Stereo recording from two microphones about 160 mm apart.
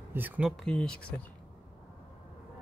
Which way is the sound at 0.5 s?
5° left (ahead or behind).